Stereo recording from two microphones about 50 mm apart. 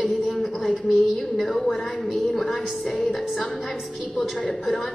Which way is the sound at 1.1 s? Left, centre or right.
Centre.